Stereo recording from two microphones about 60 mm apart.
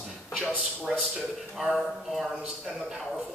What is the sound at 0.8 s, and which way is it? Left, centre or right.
A man's voice, centre.